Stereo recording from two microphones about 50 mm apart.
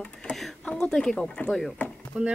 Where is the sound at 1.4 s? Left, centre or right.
Left.